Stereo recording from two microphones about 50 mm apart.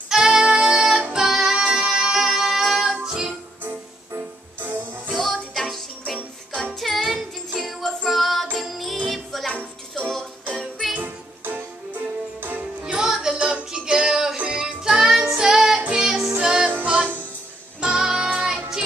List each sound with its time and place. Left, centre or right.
0.1 s music: centre
4.6 s music: right
5.1 s music: centre
6.1 s music: centre
6.8 s music: centre
11.0 s music: right
12.8 s music: centre
16.6 s music: right
17.7 s music: centre